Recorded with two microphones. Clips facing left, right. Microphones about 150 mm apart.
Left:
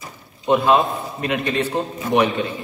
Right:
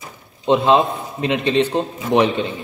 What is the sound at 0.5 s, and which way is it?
A man's voice, 25° right (ahead or behind).